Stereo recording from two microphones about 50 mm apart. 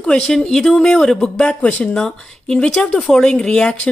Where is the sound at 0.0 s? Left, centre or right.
Centre.